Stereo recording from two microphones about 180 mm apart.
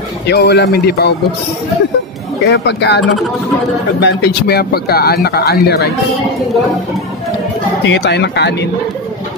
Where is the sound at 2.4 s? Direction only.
65° left (ahead or behind).